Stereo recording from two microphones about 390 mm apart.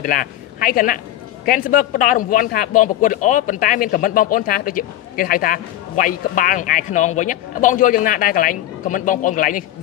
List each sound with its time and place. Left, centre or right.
0.0 s speech: left